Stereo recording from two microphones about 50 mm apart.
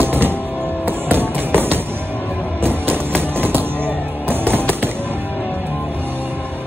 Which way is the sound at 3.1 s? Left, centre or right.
Right.